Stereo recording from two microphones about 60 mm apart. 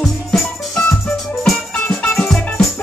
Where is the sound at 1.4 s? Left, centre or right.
Left.